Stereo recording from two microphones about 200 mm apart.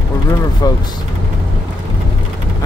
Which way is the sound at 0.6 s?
20° left (ahead or behind).